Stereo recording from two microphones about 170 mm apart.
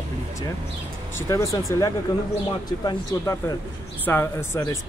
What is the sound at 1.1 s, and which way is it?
Speech, 15° left (ahead or behind).